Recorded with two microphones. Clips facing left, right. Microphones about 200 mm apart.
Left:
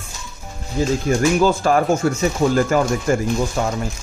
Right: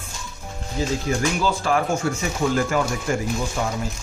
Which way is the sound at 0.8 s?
50° left (ahead or behind).